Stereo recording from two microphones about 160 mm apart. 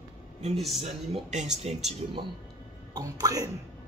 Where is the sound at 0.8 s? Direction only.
45° right (ahead or behind).